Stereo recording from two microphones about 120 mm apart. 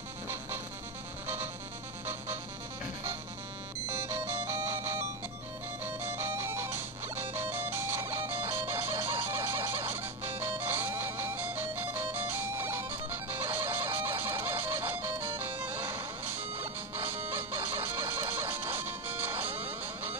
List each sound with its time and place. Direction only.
1.2 s music: 20° right (ahead or behind)
3.8 s music: 20° right (ahead or behind)